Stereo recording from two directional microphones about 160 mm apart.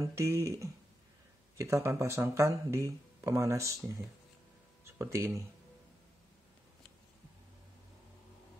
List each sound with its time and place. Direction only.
0.0 s speech: 20° right (ahead or behind)